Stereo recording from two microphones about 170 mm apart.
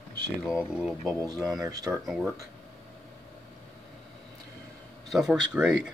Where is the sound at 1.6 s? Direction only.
20° right (ahead or behind).